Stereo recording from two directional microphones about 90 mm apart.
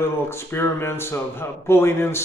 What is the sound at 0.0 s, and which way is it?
A man's voice, 30° left (ahead or behind).